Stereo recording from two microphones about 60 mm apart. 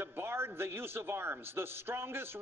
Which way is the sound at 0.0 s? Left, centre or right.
Right.